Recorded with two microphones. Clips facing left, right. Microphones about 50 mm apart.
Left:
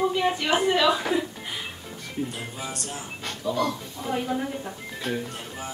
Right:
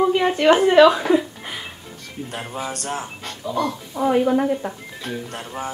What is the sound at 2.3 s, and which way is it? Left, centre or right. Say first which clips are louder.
Music: right 6 dB; right.